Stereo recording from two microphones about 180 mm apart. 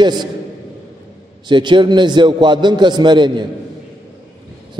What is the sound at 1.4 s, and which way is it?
A man's voice, 25° right (ahead or behind).